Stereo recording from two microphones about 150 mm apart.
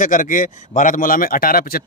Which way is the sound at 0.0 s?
60° left (ahead or behind).